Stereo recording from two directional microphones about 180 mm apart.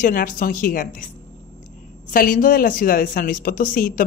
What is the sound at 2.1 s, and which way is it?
A woman's voice, 50° left (ahead or behind).